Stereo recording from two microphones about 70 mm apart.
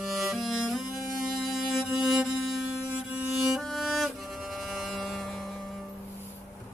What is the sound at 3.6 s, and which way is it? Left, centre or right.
Music, centre.